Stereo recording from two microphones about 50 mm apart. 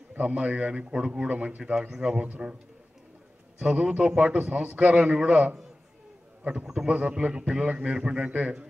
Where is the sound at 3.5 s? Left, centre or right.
Centre.